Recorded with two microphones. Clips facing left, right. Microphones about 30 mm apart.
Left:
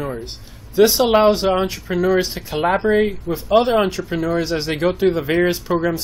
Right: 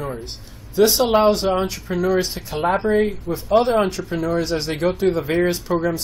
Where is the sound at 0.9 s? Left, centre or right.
Centre.